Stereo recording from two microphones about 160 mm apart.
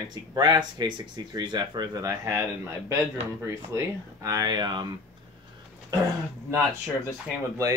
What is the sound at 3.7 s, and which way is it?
Speech, 20° right (ahead or behind).